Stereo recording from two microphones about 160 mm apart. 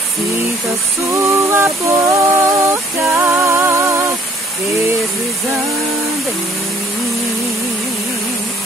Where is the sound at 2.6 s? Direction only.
15° right (ahead or behind).